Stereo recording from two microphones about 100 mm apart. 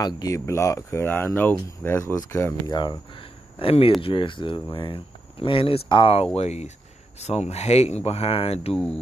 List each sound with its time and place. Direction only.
0.0 s speech: 35° left (ahead or behind)
2.1 s speech: 35° left (ahead or behind)
2.7 s speech: 50° left (ahead or behind)
6.3 s speech: 90° left